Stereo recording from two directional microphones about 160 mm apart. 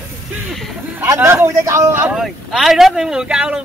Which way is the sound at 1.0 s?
15° right (ahead or behind).